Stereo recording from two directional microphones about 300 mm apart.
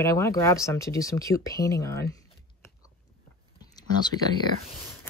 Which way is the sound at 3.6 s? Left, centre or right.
Centre.